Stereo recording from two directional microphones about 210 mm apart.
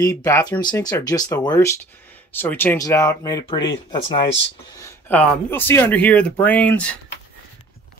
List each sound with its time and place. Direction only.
0.0 s speech: 15° left (ahead or behind)
4.8 s speech: 10° left (ahead or behind)